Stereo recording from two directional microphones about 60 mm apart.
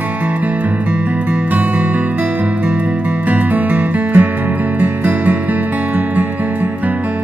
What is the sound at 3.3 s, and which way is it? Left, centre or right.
Music, right.